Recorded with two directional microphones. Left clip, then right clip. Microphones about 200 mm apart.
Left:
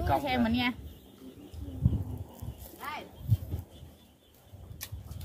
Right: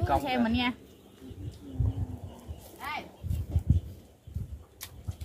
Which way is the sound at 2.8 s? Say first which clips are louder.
Right 3 dB; 55° right (ahead or behind).